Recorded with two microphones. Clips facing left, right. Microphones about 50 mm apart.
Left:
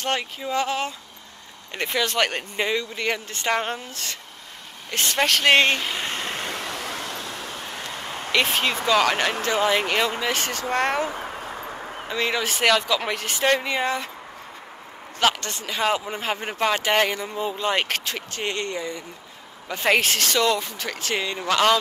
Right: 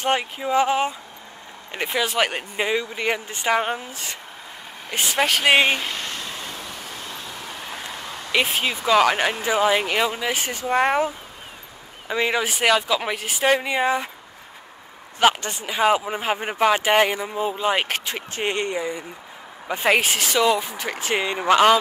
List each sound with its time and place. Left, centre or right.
0.0 s speech: centre
6.2 s vehicle: left
8.5 s speech: centre
11.1 s a sound: left
12.1 s speech: centre
15.1 s speech: centre